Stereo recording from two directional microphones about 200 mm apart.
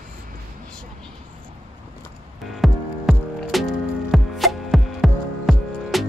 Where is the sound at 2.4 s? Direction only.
Centre (ahead or behind).